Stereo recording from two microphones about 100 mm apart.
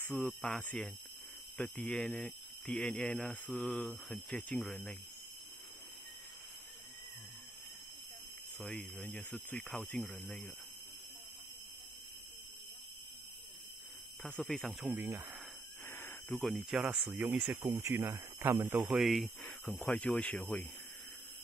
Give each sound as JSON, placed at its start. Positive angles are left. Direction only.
{"t": 0.0, "sound": "speech", "side_deg": 15}
{"t": 0.3, "sound": "speech", "side_deg": 0}
{"t": 0.6, "sound": "speech", "side_deg": 15}
{"t": 8.5, "sound": "speech", "side_deg": 5}
{"t": 9.3, "sound": "speech", "side_deg": 15}
{"t": 14.4, "sound": "speech", "side_deg": 10}
{"t": 14.7, "sound": "speech", "side_deg": -15}
{"t": 16.3, "sound": "speech", "side_deg": 0}
{"t": 16.8, "sound": "speech", "side_deg": -15}
{"t": 17.6, "sound": "speech", "side_deg": -35}
{"t": 17.9, "sound": "speech", "side_deg": -25}
{"t": 18.9, "sound": "speech", "side_deg": 0}